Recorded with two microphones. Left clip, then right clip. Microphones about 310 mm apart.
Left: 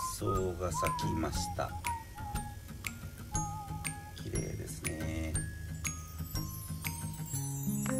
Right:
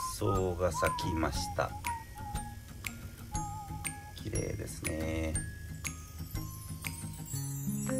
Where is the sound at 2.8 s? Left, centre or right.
Centre.